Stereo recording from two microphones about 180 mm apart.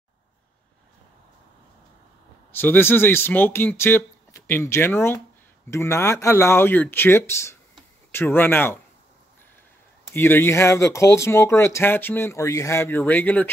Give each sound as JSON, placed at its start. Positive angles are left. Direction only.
{"t": 2.5, "sound": "speech", "side_deg": 10}
{"t": 10.1, "sound": "speech", "side_deg": 10}